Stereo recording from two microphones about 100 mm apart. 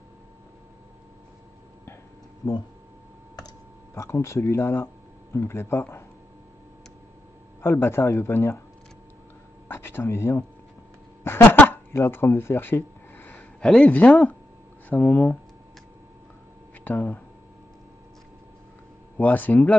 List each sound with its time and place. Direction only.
3.9 s speech: 25° left (ahead or behind)
7.6 s speech: 25° left (ahead or behind)
9.7 s a sound: 20° left (ahead or behind)
13.6 s speech: 5° left (ahead or behind)
16.8 s speech: 20° left (ahead or behind)
19.1 s speech: 15° left (ahead or behind)